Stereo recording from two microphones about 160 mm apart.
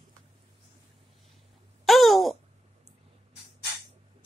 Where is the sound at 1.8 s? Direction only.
Centre (ahead or behind).